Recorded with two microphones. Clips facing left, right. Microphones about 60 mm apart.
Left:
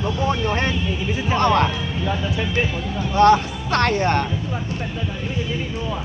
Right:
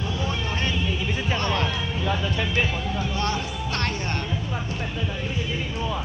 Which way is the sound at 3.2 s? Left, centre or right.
Left.